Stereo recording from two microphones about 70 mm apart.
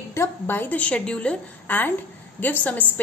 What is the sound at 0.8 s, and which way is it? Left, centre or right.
Speech, centre.